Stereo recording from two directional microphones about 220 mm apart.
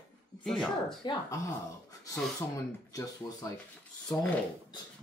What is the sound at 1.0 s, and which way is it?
Speech, 20° left (ahead or behind).